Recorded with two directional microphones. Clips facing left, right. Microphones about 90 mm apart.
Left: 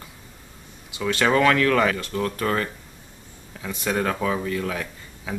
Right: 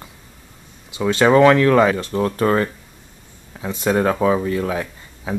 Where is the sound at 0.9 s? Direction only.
25° right (ahead or behind).